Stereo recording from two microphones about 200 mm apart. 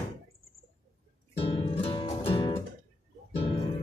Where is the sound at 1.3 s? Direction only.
25° left (ahead or behind).